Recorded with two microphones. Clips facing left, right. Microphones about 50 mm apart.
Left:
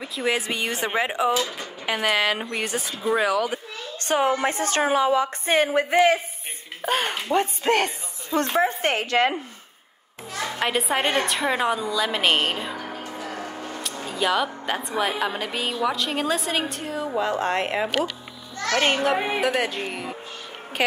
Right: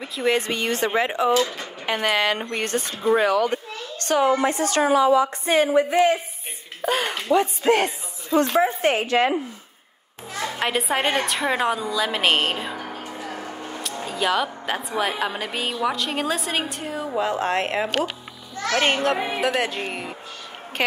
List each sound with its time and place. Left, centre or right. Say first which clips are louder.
0.0 s a woman's voice: right 3 dB; centre
4.0 s a woman's voice: right 2 dB; left
4.5 s a woman's voice: right 2 dB; left
5.5 s a woman's voice: right 1 dB; left
6.9 s a woman's voice: right 2 dB; left
10.6 s a woman's voice: even; centre
13.0 s a sound: even; centre
14.0 s a woman's voice: even; centre
19.1 s speech: left 1 dB; centre
19.4 s a woman's voice: right 1 dB; centre